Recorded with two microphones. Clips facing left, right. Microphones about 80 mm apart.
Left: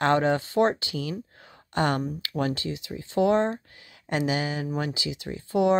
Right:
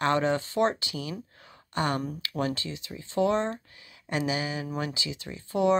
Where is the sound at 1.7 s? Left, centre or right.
Left.